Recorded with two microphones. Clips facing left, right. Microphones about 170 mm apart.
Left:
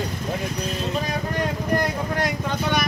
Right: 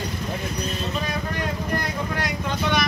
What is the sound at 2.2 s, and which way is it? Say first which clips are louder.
Vehicle: left 1 dB; 40° left (ahead or behind).